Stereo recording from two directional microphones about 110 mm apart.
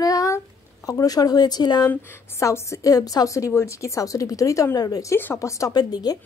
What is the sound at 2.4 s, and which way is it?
A woman's voice, 25° left (ahead or behind).